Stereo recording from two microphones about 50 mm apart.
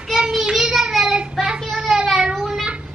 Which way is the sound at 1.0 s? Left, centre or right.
Right.